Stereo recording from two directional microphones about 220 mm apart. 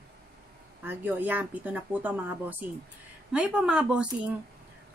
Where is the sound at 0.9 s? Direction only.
10° right (ahead or behind).